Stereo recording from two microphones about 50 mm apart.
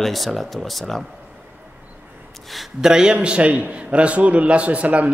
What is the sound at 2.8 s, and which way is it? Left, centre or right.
A man's voice, centre.